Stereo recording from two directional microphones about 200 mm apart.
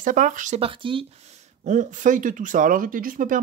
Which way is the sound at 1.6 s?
40° right (ahead or behind).